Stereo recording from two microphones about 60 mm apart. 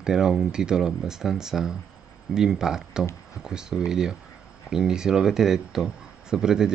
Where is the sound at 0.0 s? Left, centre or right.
Centre.